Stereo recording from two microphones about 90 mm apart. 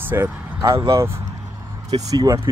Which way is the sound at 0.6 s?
35° right (ahead or behind).